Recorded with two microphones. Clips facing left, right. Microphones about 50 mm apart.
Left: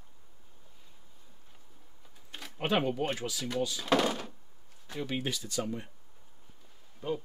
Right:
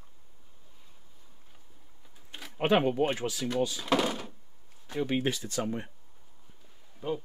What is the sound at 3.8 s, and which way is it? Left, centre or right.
Speech, centre.